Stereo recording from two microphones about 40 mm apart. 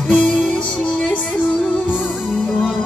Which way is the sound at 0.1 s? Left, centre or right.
Left.